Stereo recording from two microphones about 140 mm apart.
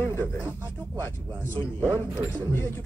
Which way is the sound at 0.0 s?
15° left (ahead or behind).